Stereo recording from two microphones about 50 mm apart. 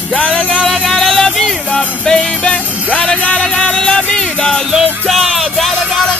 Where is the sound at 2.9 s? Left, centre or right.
Left.